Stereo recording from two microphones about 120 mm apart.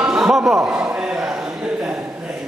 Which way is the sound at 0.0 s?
5° right (ahead or behind).